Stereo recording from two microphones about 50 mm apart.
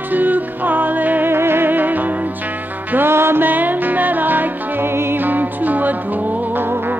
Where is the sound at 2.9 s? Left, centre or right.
Right.